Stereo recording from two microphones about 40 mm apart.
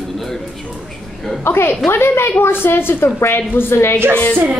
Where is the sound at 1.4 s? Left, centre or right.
Left.